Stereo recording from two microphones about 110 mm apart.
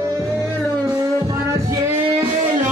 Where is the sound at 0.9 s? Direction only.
30° right (ahead or behind).